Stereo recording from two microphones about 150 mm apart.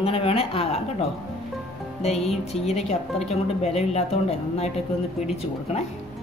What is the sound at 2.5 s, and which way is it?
A woman's voice, 45° left (ahead or behind).